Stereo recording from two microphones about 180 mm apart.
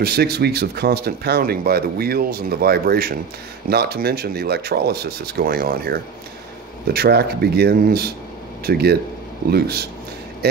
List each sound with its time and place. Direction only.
0.0 s speech: 60° right (ahead or behind)